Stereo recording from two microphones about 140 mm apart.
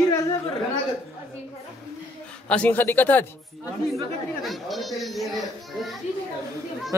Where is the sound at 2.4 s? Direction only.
10° left (ahead or behind).